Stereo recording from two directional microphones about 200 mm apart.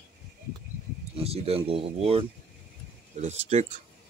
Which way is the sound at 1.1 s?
30° right (ahead or behind).